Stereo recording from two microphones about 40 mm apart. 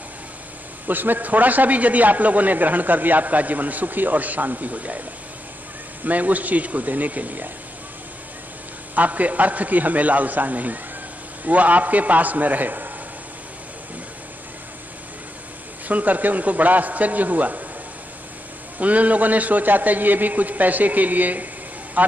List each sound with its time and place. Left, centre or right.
0.8 s a man's voice: right
6.0 s a man's voice: right
8.9 s a man's voice: right
15.9 s a man's voice: right
18.8 s a man's voice: right